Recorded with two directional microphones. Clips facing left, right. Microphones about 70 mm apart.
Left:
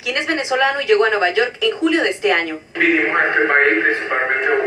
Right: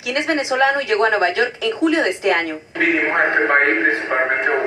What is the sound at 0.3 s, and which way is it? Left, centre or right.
A woman's voice, right.